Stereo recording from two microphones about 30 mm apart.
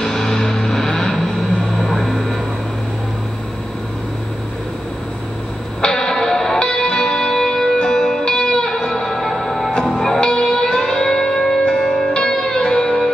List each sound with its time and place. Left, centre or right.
0.0 s music: centre
2.0 s vehicle: centre
5.9 s music: centre
11.1 s church bell: centre
11.6 s music: left